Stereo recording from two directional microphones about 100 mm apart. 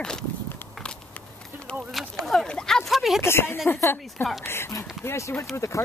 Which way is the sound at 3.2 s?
25° left (ahead or behind).